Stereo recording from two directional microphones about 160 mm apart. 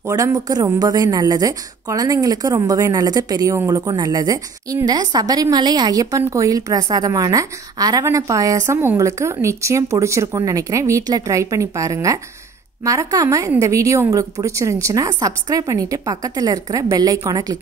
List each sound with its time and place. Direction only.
0.1 s a woman's voice: 25° right (ahead or behind)